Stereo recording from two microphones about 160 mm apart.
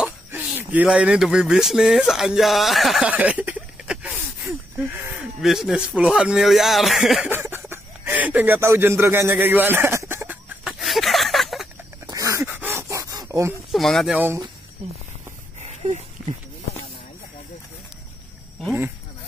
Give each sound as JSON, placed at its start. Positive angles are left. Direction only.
{"t": 0.0, "sound": "speech", "side_deg": -10}
{"t": 7.3, "sound": "a sound", "side_deg": -15}
{"t": 12.1, "sound": "a sound", "side_deg": -20}
{"t": 13.7, "sound": "speech", "side_deg": 0}
{"t": 14.1, "sound": "speech", "side_deg": -15}
{"t": 15.6, "sound": "dog", "side_deg": -45}